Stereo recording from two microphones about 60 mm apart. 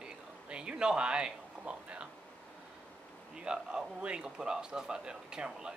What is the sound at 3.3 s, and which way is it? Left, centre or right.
A man's voice, centre.